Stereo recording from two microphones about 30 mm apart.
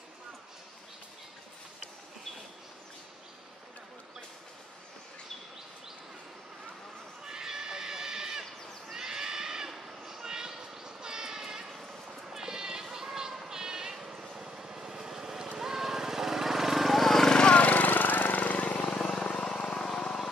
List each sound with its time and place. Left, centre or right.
7.2 s horse: right
8.9 s neigh: centre
9.7 s a sound: centre
14.3 s vehicle: right; by 17.3 s centre
17.4 s lawn mower: left
17.6 s a sound: left
18.4 s a sound: left
18.9 s vehicle: left
19.7 s vehicle: left